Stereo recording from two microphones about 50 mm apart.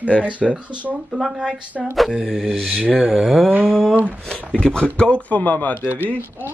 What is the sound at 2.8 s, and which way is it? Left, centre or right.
Speech, right.